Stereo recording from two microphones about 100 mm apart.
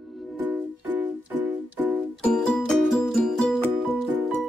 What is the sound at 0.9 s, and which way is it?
Music, 20° right (ahead or behind).